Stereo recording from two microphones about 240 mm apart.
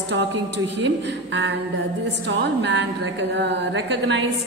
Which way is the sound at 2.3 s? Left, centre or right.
Right.